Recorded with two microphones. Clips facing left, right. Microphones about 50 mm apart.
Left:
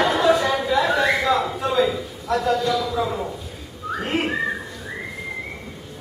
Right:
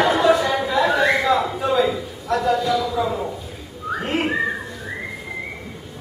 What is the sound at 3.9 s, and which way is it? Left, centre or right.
Whistling, centre.